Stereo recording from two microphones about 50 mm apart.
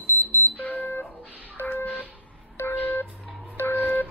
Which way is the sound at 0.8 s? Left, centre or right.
Left.